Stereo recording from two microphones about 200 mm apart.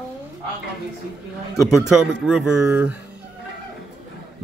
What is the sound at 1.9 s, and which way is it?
Speech, 5° right (ahead or behind).